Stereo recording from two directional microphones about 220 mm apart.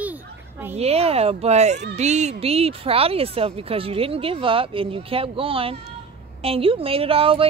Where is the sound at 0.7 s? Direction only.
30° right (ahead or behind).